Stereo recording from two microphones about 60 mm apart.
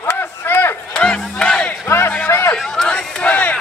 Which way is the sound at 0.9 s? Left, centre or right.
Centre.